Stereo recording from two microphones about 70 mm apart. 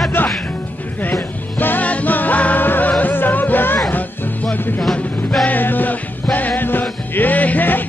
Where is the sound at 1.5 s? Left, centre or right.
Left.